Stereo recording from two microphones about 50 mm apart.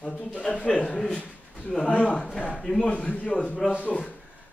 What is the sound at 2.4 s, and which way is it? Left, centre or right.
Speech, left.